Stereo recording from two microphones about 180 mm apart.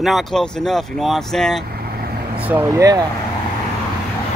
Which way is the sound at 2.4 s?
10° right (ahead or behind).